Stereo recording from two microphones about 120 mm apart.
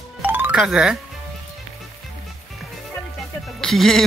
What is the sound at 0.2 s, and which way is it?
Music, 15° right (ahead or behind).